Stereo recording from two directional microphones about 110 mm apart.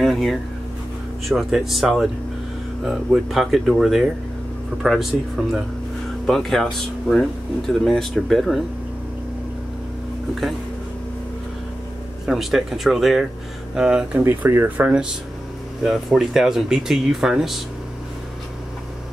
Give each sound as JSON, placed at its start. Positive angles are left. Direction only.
{"t": 0.0, "sound": "speech", "side_deg": 0}
{"t": 6.2, "sound": "speech", "side_deg": 5}
{"t": 12.3, "sound": "speech", "side_deg": 0}
{"t": 14.2, "sound": "speech", "side_deg": -20}
{"t": 15.8, "sound": "speech", "side_deg": -5}